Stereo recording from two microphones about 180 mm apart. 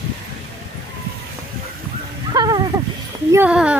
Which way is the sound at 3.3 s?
10° right (ahead or behind).